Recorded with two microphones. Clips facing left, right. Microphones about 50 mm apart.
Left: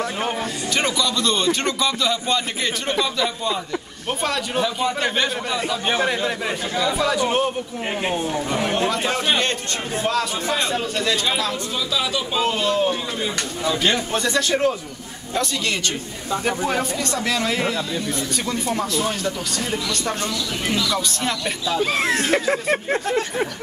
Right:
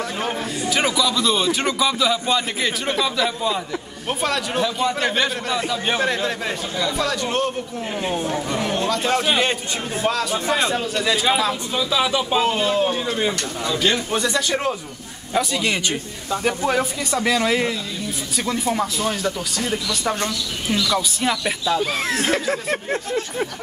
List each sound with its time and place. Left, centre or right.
0.7 s a man's voice: centre
8.5 s a man's voice: centre
9.0 s a man's voice: centre
12.4 s a man's voice: centre
13.7 s a man's voice: centre
14.1 s a man's voice: centre
16.3 s a man's voice: centre
21.9 s a man's voice: centre